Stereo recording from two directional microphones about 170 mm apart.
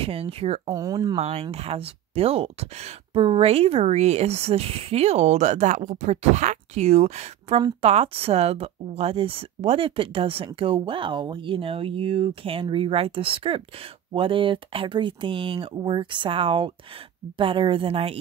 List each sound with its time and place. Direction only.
0.0 s speech: 35° right (ahead or behind)
0.7 s speech: 20° right (ahead or behind)
1.1 s speech: 35° right (ahead or behind)